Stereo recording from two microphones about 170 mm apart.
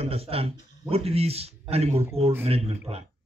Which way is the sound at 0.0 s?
35° right (ahead or behind).